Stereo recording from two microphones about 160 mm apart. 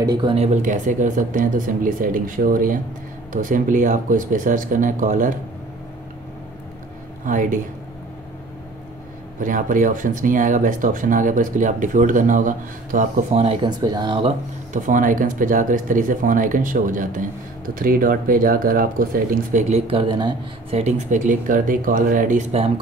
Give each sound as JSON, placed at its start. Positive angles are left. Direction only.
{"t": 0.0, "sound": "speech", "side_deg": -25}
{"t": 7.2, "sound": "speech", "side_deg": -55}
{"t": 9.4, "sound": "speech", "side_deg": -55}
{"t": 13.6, "sound": "speech", "side_deg": -25}
{"t": 14.7, "sound": "speech", "side_deg": -55}
{"t": 19.9, "sound": "speech", "side_deg": -30}
{"t": 20.8, "sound": "speech", "side_deg": -45}